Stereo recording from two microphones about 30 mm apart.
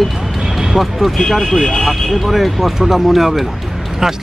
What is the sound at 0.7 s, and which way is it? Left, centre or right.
Speech, centre.